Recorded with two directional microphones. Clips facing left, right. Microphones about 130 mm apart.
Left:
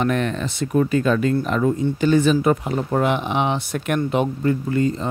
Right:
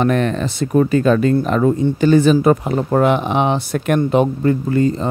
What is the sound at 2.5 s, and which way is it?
Speech, 50° right (ahead or behind).